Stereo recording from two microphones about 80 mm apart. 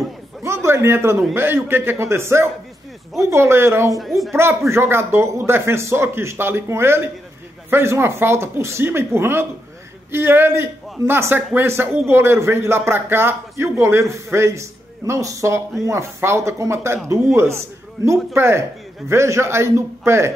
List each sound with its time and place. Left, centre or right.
0.4 s a sound: right
1.3 s a man's voice: right
4.0 s speech: centre
4.4 s a man's voice: right